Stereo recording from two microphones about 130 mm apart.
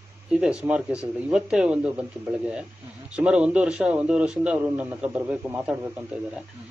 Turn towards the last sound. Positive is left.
turn(degrees=-10)  # may be behind; listen again after turning